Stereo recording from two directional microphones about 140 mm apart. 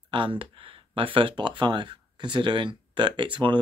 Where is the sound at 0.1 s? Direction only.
35° right (ahead or behind).